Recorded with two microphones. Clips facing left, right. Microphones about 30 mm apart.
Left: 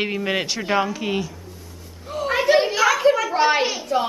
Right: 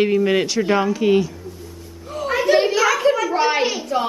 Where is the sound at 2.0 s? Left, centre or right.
Centre.